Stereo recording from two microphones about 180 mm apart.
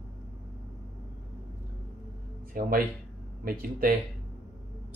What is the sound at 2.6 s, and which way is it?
Speech, 55° right (ahead or behind).